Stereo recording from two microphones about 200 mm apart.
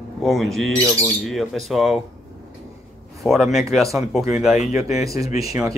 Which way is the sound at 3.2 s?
Centre (ahead or behind).